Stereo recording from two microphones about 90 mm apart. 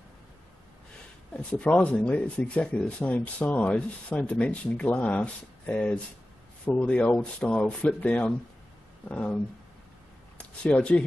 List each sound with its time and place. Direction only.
1.3 s speech: 15° left (ahead or behind)
10.6 s speech: 10° left (ahead or behind)